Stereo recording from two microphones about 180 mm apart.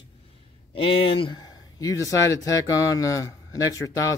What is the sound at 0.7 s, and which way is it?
Speech, 30° left (ahead or behind).